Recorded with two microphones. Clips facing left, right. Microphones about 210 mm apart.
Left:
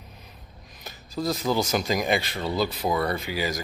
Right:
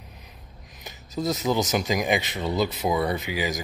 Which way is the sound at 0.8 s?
20° right (ahead or behind).